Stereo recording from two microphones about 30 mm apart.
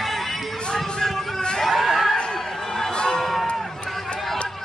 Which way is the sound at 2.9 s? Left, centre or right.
Left.